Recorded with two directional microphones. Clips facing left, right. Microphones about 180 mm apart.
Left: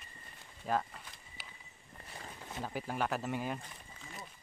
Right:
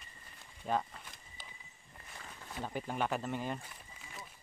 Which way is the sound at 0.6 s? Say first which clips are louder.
Even; centre (ahead or behind).